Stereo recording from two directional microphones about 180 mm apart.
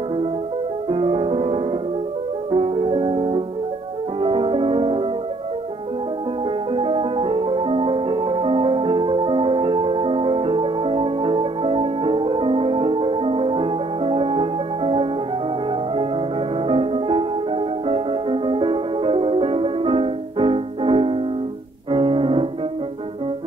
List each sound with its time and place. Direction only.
0.8 s music: 30° right (ahead or behind)
6.7 s music: 30° right (ahead or behind)